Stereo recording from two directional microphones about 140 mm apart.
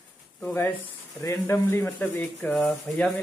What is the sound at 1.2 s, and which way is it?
Speech, 20° left (ahead or behind).